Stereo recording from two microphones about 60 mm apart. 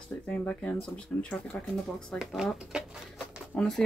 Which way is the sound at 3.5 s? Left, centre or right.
Centre.